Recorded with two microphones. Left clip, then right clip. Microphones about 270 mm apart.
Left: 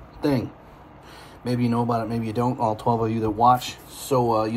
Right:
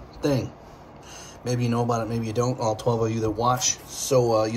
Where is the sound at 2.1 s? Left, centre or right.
Right.